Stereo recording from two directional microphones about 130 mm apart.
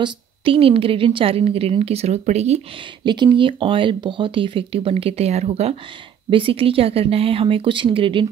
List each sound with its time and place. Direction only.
0.0 s speech: 45° right (ahead or behind)
3.0 s speech: 35° right (ahead or behind)